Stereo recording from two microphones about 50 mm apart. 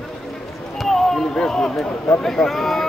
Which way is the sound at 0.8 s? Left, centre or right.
Centre.